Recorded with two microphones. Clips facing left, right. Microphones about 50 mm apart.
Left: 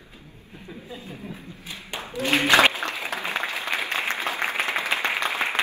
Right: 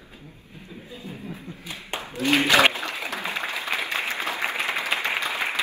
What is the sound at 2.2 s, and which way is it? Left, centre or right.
Speech, left.